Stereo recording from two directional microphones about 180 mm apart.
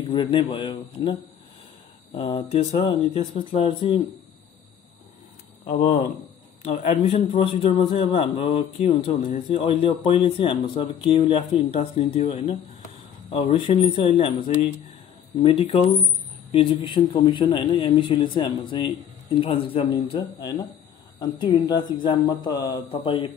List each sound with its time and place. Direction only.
0.1 s speech: 30° left (ahead or behind)
2.1 s a man's voice: 30° left (ahead or behind)
5.7 s speech: 50° left (ahead or behind)
6.6 s a man's voice: 35° left (ahead or behind)